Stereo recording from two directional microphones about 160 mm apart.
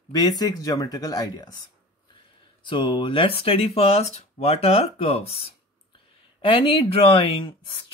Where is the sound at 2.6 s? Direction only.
30° left (ahead or behind).